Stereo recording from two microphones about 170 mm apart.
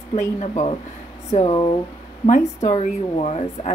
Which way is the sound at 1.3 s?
40° left (ahead or behind).